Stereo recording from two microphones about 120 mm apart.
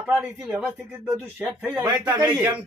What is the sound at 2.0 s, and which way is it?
Speech, 40° right (ahead or behind).